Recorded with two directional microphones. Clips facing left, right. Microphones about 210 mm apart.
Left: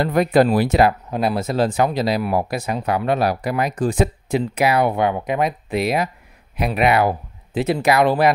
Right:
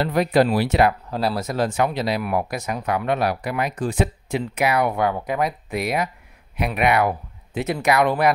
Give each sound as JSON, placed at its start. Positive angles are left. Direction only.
{"t": 0.0, "sound": "speech", "side_deg": 50}
{"t": 1.1, "sound": "speech", "side_deg": 20}